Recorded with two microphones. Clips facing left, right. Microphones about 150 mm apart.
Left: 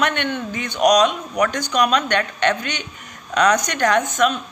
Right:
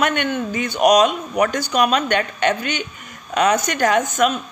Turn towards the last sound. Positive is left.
turn(degrees=-10)  # may be behind; listen again after turning